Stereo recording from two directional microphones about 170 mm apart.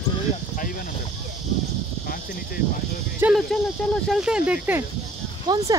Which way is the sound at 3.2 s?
10° right (ahead or behind).